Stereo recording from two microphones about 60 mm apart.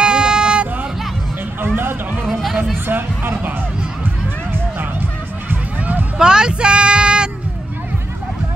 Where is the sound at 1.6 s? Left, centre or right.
Right.